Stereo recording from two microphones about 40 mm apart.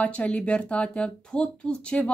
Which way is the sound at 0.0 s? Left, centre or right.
Left.